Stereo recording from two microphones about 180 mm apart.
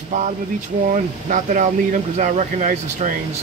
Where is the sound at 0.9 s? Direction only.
45° right (ahead or behind).